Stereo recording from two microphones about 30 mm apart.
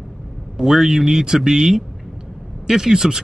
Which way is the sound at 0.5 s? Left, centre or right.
Centre.